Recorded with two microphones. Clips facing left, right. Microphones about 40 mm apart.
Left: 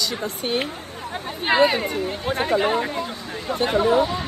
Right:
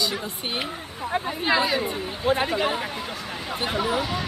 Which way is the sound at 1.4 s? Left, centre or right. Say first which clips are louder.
Left 6 dB; left.